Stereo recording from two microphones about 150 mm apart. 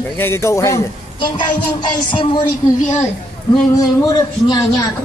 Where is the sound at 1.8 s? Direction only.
30° left (ahead or behind).